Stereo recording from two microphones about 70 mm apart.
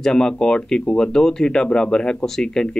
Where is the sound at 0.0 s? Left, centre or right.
Centre.